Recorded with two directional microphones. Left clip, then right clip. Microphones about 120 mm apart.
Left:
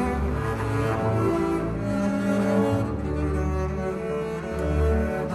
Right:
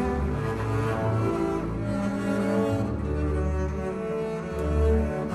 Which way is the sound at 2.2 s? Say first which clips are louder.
Left 2 dB; 10° left (ahead or behind).